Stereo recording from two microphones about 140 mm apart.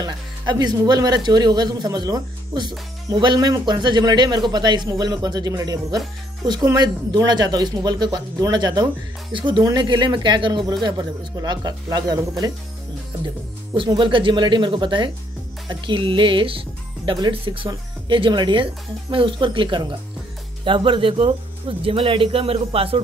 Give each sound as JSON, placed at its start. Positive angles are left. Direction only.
{"t": 0.0, "sound": "speech", "side_deg": -30}
{"t": 13.7, "sound": "speech", "side_deg": -35}